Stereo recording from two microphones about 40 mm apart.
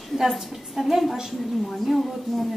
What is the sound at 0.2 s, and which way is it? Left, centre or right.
Speech, centre.